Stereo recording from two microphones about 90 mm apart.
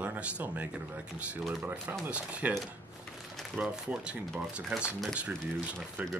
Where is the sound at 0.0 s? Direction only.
20° right (ahead or behind).